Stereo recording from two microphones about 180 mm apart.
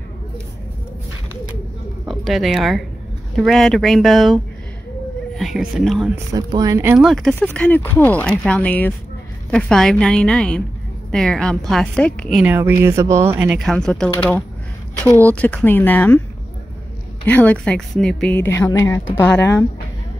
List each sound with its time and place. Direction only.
2.0 s a woman's voice: centre (ahead or behind)
5.4 s a woman's voice: centre (ahead or behind)
6.3 s speech: 20° right (ahead or behind)
7.1 s a woman's voice: centre (ahead or behind); by 13.5 s 15° right (ahead or behind)
13.6 s a woman's voice: 5° left (ahead or behind)
17.3 s speech: 10° left (ahead or behind)